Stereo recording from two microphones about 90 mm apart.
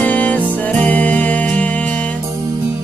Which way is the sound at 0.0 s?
15° left (ahead or behind).